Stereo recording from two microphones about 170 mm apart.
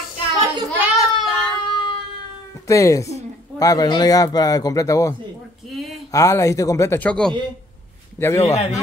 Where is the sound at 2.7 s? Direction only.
20° left (ahead or behind).